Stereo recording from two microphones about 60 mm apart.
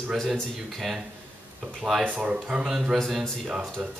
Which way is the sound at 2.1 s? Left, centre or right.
Centre.